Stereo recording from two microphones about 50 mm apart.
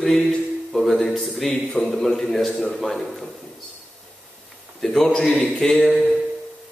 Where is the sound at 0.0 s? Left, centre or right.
Centre.